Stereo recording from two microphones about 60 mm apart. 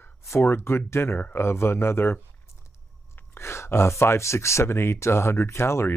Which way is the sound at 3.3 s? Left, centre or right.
Left.